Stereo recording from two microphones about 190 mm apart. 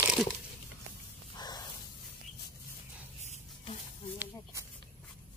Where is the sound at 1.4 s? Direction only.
20° left (ahead or behind).